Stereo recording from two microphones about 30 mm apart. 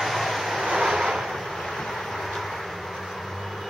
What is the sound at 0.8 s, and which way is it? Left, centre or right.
Waves, centre.